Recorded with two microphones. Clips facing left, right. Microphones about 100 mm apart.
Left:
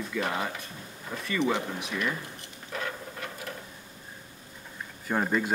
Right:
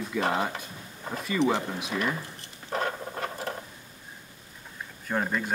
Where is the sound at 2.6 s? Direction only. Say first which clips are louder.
Right 5 dB; 40° right (ahead or behind).